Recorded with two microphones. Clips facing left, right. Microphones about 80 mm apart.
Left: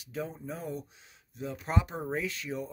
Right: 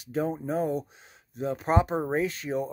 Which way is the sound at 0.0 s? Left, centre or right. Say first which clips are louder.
Right 9 dB; right.